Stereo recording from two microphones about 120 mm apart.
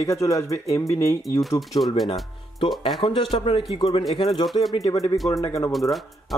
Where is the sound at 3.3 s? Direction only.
45° left (ahead or behind).